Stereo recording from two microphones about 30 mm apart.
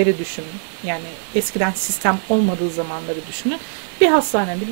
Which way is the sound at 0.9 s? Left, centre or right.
Right.